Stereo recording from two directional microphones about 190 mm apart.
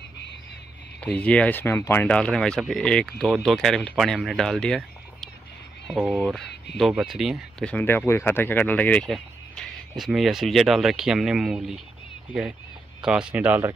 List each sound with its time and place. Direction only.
1.0 s speech: 5° left (ahead or behind)
6.4 s a sound: 65° left (ahead or behind)
6.8 s speech: centre (ahead or behind)
13.0 s speech: 5° right (ahead or behind)